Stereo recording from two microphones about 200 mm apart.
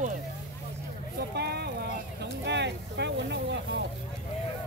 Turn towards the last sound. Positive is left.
turn(degrees=-65)  # may be behind; listen again after turning